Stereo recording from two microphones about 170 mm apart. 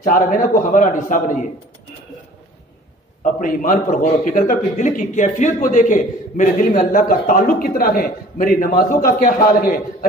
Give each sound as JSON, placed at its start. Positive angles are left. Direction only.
{"t": 0.0, "sound": "a man's voice", "side_deg": 55}
{"t": 3.2, "sound": "a man's voice", "side_deg": 50}